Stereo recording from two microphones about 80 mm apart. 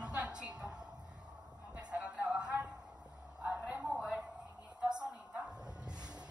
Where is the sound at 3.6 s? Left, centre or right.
Right.